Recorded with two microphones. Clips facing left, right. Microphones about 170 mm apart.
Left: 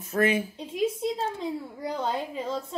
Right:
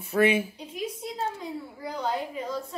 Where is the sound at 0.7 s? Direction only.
25° left (ahead or behind).